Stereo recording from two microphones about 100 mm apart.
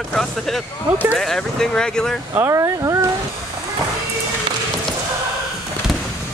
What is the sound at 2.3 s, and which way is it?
Speech, 30° right (ahead or behind).